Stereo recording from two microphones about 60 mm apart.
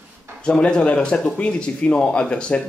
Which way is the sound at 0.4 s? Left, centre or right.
Centre.